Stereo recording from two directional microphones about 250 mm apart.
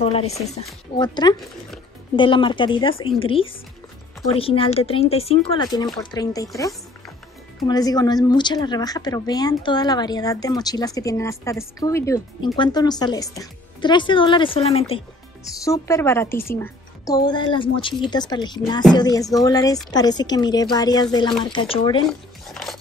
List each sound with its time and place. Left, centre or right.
0.0 s a woman's voice: left
15.6 s a woman's voice: centre
22.5 s a sound: centre